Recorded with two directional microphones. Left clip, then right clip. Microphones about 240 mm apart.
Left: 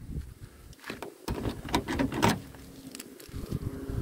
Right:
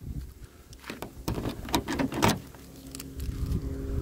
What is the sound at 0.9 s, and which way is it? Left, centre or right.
Patter, right.